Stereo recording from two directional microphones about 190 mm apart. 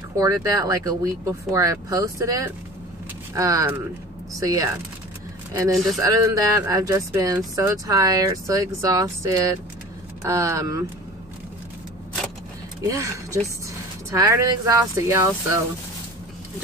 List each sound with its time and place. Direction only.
0.2 s speech: 20° right (ahead or behind)
5.5 s speech: 15° right (ahead or behind)
12.8 s speech: 15° right (ahead or behind)